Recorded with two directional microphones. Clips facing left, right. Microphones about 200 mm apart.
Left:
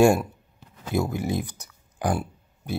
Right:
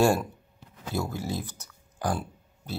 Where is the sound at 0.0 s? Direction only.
15° left (ahead or behind).